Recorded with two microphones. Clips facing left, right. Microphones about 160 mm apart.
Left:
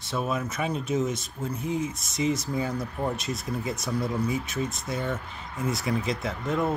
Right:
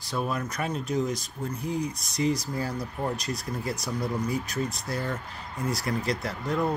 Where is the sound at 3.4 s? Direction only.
20° left (ahead or behind).